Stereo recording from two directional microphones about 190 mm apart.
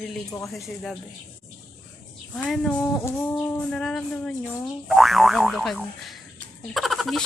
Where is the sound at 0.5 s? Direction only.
Centre (ahead or behind).